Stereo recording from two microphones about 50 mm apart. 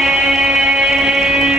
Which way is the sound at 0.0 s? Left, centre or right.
Centre.